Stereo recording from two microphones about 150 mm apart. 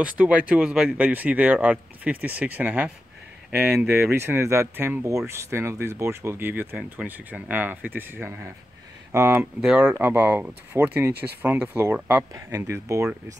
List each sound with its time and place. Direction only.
0.0 s speech: 10° right (ahead or behind)
9.6 s speech: 5° right (ahead or behind)